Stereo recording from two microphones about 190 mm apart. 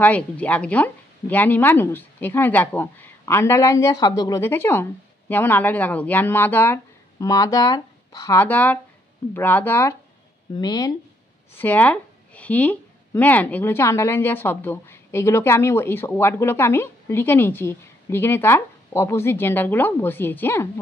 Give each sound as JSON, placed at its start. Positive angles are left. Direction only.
{"t": 0.0, "sound": "a woman's voice", "side_deg": 10}
{"t": 11.5, "sound": "a woman's voice", "side_deg": 10}